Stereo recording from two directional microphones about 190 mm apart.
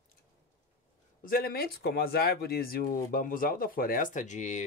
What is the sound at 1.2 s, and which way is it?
Speech, 50° left (ahead or behind).